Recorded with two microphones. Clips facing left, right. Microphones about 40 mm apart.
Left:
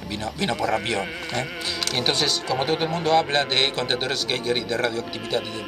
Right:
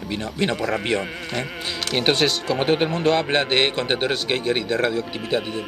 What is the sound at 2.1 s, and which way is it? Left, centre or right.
A man's voice, right.